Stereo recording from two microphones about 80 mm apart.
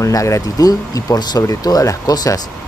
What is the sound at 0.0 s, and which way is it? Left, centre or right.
Speech, left.